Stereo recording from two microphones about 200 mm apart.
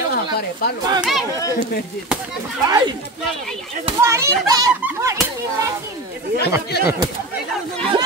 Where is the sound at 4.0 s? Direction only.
15° right (ahead or behind).